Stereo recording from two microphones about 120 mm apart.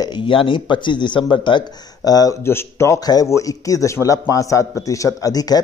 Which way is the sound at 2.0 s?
30° left (ahead or behind).